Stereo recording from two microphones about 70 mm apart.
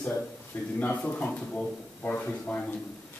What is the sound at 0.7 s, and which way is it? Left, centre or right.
Speech, left.